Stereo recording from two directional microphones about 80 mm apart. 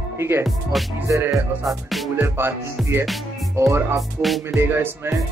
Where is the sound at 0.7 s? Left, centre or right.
Centre.